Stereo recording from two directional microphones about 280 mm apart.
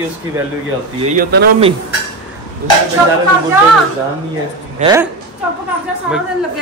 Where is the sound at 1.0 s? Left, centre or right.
Right.